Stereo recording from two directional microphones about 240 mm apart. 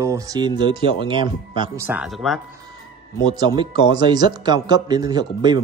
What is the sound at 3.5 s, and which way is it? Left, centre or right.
Speech, centre.